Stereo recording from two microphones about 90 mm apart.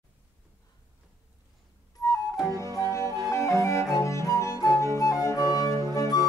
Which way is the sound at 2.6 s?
35° left (ahead or behind).